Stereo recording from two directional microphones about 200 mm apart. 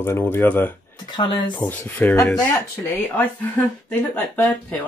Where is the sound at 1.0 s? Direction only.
20° left (ahead or behind).